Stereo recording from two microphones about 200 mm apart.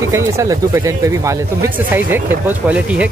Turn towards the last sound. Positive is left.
turn(degrees=-10)  # may be behind; listen again after turning